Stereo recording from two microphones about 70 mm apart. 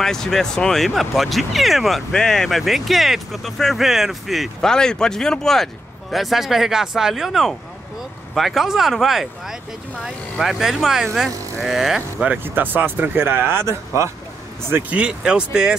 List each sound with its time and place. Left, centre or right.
0.0 s speech: centre
12.4 s speech: right; by 15.7 s centre